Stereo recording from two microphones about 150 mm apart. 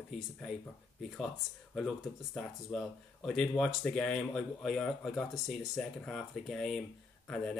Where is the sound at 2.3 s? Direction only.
5° left (ahead or behind).